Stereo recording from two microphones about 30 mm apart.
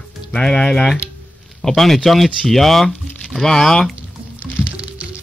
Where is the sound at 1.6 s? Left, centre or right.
Centre.